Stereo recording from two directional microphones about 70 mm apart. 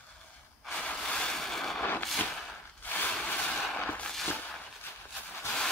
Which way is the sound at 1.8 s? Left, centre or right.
Left.